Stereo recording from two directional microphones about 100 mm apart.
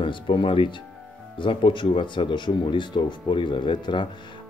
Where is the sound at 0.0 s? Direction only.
60° left (ahead or behind).